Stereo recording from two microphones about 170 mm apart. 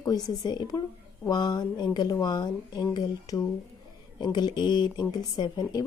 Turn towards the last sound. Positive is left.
turn(degrees=20)  # may be behind; listen again after turning